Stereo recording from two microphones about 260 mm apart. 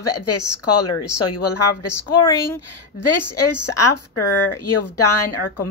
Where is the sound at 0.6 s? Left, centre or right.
Left.